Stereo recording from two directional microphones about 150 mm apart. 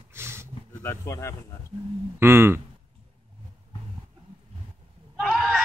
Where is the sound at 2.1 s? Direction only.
15° right (ahead or behind).